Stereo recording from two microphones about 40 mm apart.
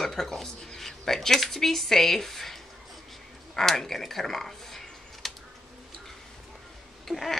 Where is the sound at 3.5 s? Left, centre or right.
Centre.